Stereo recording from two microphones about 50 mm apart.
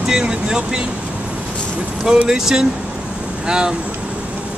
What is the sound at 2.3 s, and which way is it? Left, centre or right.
Speech, centre.